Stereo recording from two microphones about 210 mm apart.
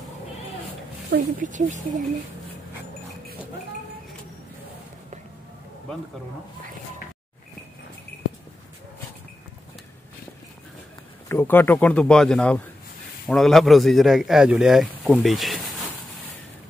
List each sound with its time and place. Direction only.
1.1 s speech: 40° right (ahead or behind)
11.2 s a man's voice: 10° left (ahead or behind)